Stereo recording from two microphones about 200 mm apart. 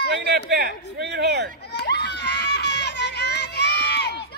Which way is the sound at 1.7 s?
55° left (ahead or behind).